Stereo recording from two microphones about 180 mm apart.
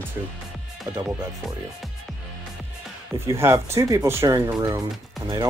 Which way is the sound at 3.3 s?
15° right (ahead or behind).